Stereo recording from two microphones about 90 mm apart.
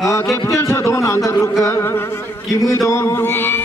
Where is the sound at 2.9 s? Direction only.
30° left (ahead or behind).